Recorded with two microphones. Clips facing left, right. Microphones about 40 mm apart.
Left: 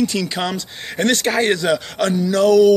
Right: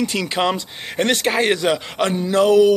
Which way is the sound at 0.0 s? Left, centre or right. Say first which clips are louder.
Even; right.